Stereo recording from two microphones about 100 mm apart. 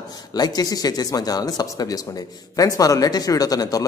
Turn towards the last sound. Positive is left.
turn(degrees=35)  # may be behind; listen again after turning